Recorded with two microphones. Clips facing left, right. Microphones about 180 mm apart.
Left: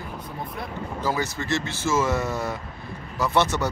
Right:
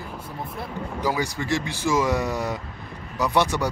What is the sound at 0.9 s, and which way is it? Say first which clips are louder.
Speech: right 1 dB; 15° right (ahead or behind).